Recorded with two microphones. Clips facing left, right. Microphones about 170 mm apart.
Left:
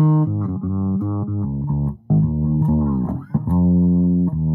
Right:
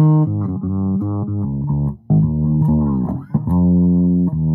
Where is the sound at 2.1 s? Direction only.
40° right (ahead or behind).